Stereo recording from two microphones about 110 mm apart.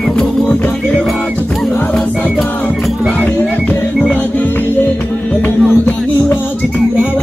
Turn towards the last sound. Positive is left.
turn(degrees=15)  # may be behind; listen again after turning